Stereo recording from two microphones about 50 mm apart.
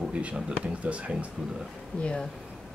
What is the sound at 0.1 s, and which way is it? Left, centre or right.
Speech, right.